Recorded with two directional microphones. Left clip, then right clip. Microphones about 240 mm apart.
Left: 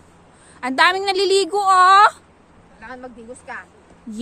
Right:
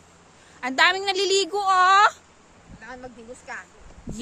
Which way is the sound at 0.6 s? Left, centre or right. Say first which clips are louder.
Left 4 dB; centre.